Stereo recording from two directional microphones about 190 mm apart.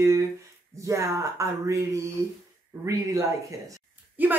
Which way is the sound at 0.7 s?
15° right (ahead or behind).